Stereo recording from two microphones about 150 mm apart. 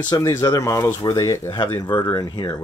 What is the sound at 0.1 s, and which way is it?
Speech, 25° left (ahead or behind).